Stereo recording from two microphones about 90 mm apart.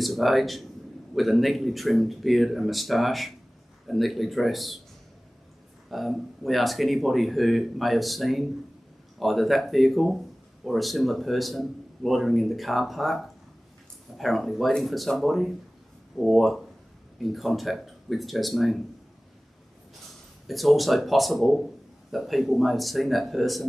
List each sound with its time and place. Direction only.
0.0 s a man's voice: centre (ahead or behind)
5.9 s a man's voice: centre (ahead or behind)
20.4 s a man's voice: centre (ahead or behind)